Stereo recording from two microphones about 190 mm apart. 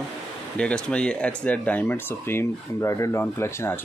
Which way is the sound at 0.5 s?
5° left (ahead or behind).